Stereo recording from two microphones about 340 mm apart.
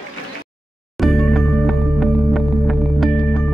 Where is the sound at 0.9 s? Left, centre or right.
Centre.